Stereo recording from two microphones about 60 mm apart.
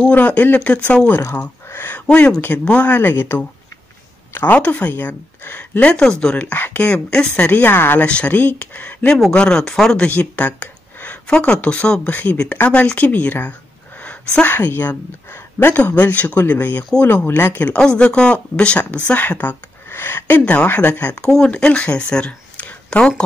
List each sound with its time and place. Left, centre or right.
0.1 s speech: left
1.7 s a sound: left
2.0 s speech: left
3.0 s speech: left
6.0 s a woman's voice: centre
6.3 s speech: left
7.1 s speech: centre
7.6 s speech: left
8.0 s speech: left
9.3 s a woman's voice: centre
10.0 s speech: left
17.7 s a woman's voice: centre